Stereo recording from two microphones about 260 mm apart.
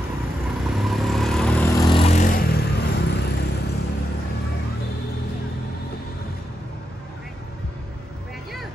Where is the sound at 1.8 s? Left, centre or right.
Left.